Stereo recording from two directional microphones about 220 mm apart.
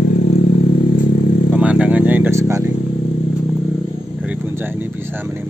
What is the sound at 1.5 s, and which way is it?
Vehicle, 5° right (ahead or behind).